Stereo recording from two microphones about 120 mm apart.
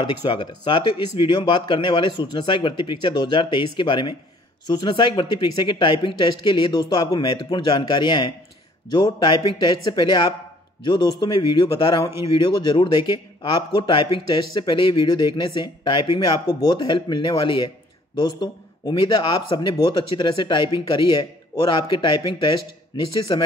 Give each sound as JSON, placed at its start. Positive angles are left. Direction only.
{"t": 0.0, "sound": "a man's voice", "side_deg": 40}